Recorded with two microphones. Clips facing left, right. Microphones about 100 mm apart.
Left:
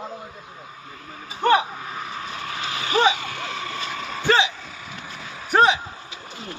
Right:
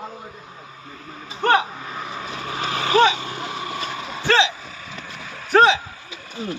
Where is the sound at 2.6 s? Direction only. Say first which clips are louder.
Right 5 dB; 35° right (ahead or behind).